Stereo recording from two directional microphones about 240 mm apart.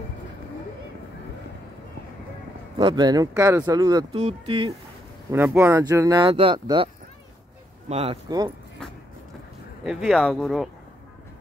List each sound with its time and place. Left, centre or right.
2.8 s speech: centre
5.3 s speech: centre
7.9 s speech: right
9.8 s speech: centre